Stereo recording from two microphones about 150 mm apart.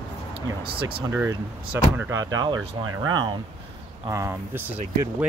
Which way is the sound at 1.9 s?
20° right (ahead or behind).